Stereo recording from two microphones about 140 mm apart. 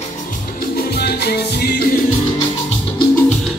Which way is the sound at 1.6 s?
90° left.